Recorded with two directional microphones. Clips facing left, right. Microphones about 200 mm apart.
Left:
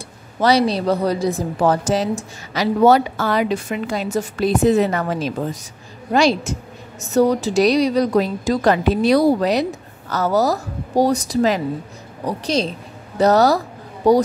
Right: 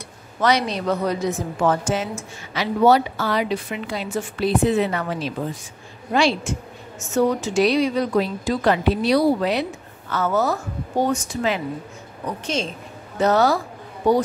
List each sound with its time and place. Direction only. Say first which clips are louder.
0.4 s a woman's voice: left 4 dB; 35° left (ahead or behind)